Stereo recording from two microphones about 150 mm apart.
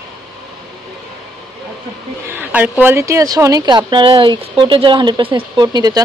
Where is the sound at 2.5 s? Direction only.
10° right (ahead or behind).